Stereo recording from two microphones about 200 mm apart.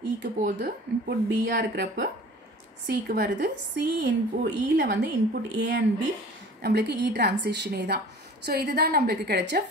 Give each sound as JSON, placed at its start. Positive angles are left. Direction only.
{"t": 0.6, "sound": "a woman's voice", "side_deg": -55}